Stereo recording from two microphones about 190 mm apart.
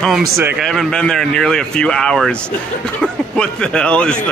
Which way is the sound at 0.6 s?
Centre (ahead or behind).